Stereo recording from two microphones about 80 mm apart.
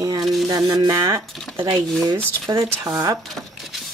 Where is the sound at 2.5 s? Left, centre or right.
Right.